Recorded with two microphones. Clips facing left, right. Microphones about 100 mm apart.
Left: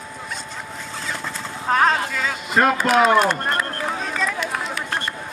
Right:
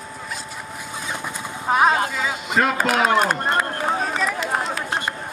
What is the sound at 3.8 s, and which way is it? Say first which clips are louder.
Run: right 3 dB; 40° right (ahead or behind).